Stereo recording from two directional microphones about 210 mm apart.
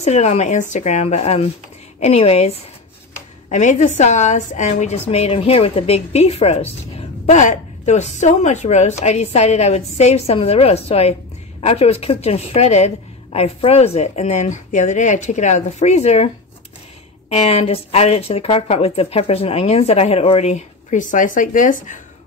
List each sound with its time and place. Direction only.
0.0 s a woman's voice: 30° left (ahead or behind)
17.3 s speech: 30° left (ahead or behind)